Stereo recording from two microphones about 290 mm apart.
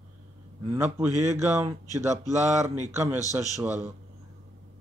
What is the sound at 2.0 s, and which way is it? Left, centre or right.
Speech, right.